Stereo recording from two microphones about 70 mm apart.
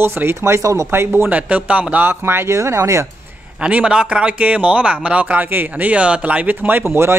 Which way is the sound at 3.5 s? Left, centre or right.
Centre.